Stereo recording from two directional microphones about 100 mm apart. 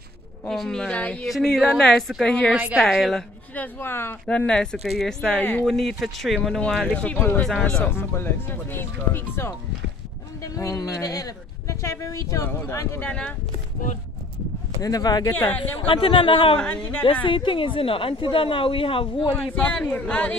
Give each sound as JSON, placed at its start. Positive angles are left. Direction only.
{"t": 0.5, "sound": "speech", "side_deg": 5}
{"t": 2.5, "sound": "a woman's voice", "side_deg": -15}
{"t": 2.9, "sound": "speech", "side_deg": 0}
{"t": 3.5, "sound": "speech", "side_deg": 20}
{"t": 4.3, "sound": "speech", "side_deg": 10}
{"t": 5.4, "sound": "speech", "side_deg": 15}
{"t": 5.7, "sound": "speech", "side_deg": 0}
{"t": 7.8, "sound": "speech", "side_deg": 25}
{"t": 10.4, "sound": "speech", "side_deg": 35}
{"t": 14.8, "sound": "speech", "side_deg": 40}
{"t": 15.4, "sound": "speech", "side_deg": 60}
{"t": 16.5, "sound": "speech", "side_deg": 15}
{"t": 17.0, "sound": "speech", "side_deg": 60}
{"t": 19.4, "sound": "speech", "side_deg": 10}